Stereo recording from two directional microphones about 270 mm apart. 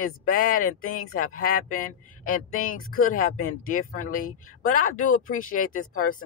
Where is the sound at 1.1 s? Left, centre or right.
Left.